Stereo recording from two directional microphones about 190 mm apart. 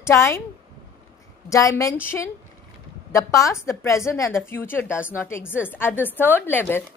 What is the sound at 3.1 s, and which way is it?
A woman's voice, 15° left (ahead or behind).